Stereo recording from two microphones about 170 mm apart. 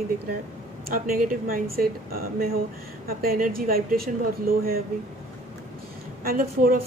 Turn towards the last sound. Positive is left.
turn(degrees=-55)  # may be behind; listen again after turning